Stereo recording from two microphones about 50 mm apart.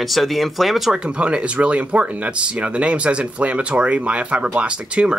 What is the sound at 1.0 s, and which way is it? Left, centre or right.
Speech, right.